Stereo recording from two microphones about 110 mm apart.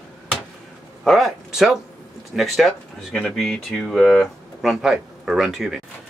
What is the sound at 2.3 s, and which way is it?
Speech, centre (ahead or behind).